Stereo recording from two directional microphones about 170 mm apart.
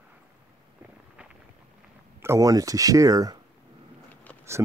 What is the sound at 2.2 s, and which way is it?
Speech, 15° right (ahead or behind).